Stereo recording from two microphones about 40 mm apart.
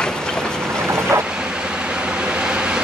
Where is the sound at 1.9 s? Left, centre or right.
Right.